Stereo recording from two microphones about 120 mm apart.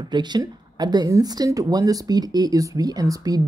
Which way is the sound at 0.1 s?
40° right (ahead or behind).